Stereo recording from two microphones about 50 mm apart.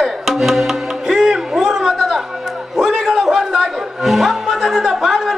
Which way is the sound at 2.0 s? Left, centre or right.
Centre.